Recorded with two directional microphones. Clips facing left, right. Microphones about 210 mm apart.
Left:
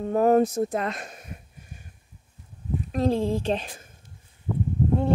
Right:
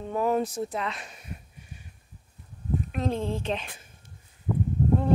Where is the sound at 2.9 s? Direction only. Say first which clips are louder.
Left 7 dB; 35° left (ahead or behind).